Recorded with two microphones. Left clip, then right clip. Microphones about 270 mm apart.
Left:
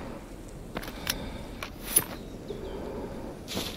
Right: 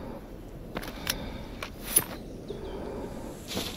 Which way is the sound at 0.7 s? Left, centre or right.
Centre.